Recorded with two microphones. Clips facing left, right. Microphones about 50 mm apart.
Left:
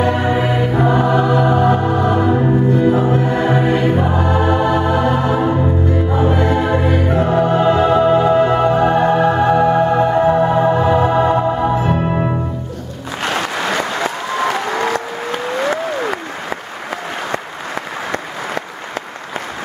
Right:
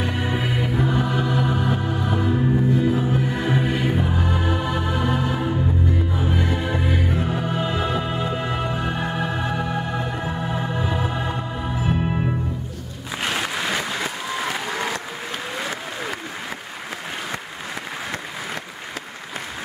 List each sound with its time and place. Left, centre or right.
0.0 s music: left
2.9 s music: left
8.1 s music: left
9.4 s music: left
12.1 s music: left
13.6 s applause: left